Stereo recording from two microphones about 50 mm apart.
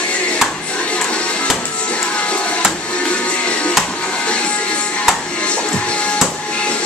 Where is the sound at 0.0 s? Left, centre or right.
Left.